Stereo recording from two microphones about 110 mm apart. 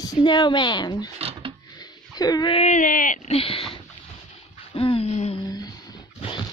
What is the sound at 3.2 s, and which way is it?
Speech, 60° left (ahead or behind).